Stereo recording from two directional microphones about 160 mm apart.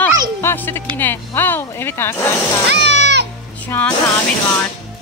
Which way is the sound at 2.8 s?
90° right.